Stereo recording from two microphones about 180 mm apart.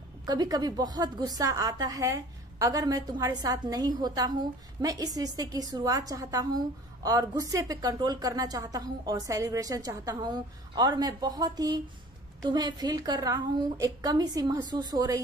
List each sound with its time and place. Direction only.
0.2 s a woman's voice: 20° right (ahead or behind)